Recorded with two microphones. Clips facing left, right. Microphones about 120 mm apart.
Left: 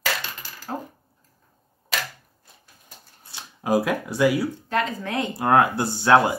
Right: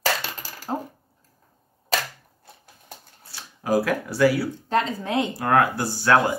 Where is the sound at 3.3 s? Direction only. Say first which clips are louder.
Even; 20° left (ahead or behind).